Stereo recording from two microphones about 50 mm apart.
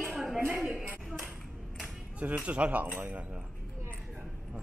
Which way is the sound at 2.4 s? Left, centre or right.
Right.